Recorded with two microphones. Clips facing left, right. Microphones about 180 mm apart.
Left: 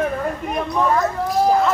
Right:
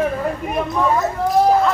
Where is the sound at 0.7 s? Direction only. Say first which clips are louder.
Left 1 dB; centre (ahead or behind).